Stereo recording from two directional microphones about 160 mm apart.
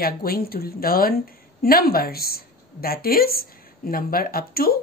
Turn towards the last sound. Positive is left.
turn(degrees=65)  # may be behind; listen again after turning